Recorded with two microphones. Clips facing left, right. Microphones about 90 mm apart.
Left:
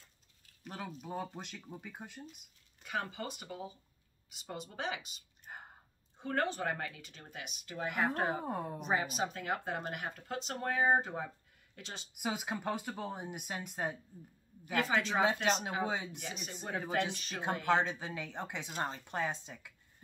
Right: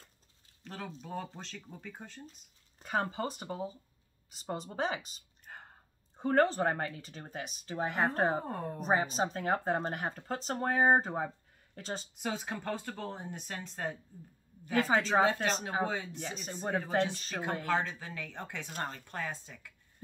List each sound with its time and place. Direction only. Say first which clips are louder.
0.7 s speech: even; 10° left (ahead or behind)
2.8 s speech: right 6 dB; 35° right (ahead or behind)
5.5 s a sound: left 1 dB; 10° left (ahead or behind)
6.1 s speech: right 7 dB; 35° right (ahead or behind)
8.5 s speech: even; 10° left (ahead or behind)
8.7 s speech: right 6 dB; 35° right (ahead or behind)
12.1 s speech: left 3 dB; 10° left (ahead or behind)
14.6 s speech: right 3 dB; 35° right (ahead or behind)
15.4 s speech: right 1 dB; 10° left (ahead or behind)
16.2 s speech: right 4 dB; 30° right (ahead or behind)
17.6 s speech: left 5 dB; 20° left (ahead or behind)